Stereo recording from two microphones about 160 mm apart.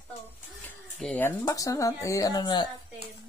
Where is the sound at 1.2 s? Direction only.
20° left (ahead or behind).